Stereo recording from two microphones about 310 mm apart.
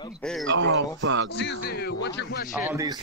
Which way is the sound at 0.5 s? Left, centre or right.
Right.